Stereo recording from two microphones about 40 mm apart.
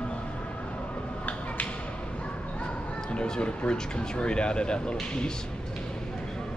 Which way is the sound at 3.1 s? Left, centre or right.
Left.